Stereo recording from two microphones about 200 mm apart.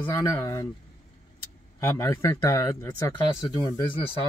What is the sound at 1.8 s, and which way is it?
Speech, 15° left (ahead or behind).